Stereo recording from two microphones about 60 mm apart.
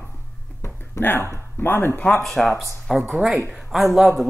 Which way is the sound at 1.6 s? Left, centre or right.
Left.